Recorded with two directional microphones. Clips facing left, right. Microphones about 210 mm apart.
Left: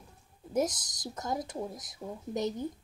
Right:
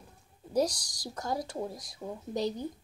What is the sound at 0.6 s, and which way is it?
Speech, 20° left (ahead or behind).